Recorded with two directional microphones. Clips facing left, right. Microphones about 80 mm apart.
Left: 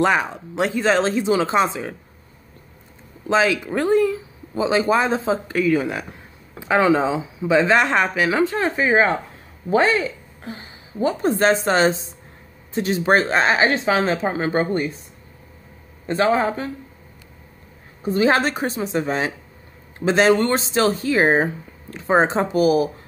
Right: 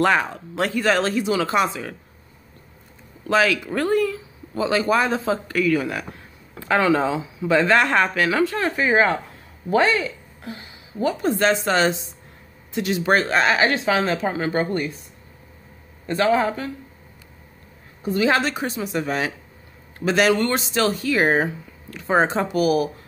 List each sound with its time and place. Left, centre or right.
0.0 s speech: centre
3.3 s speech: left
16.1 s speech: left
18.0 s a woman's voice: left